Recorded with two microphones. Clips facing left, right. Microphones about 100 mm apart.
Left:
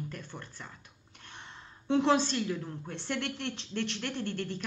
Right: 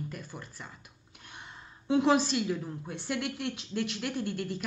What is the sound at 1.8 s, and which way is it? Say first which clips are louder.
A woman's voice: right 1 dB; 10° right (ahead or behind).